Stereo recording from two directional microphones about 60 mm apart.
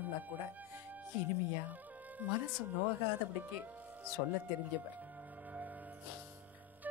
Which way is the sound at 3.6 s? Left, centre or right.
Right.